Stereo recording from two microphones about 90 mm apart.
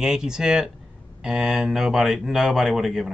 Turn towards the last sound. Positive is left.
turn(degrees=-5)  # may be behind; listen again after turning